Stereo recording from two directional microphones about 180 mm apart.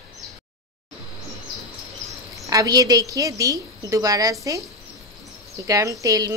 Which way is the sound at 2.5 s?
20° right (ahead or behind).